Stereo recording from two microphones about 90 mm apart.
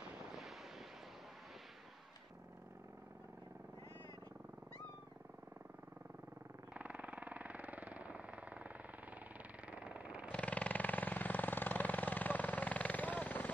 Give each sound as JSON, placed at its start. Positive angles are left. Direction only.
{"t": 0.3, "sound": "wind noise", "side_deg": 0}
{"t": 6.7, "sound": "vehicle", "side_deg": -15}
{"t": 10.3, "sound": "vehicle", "side_deg": 15}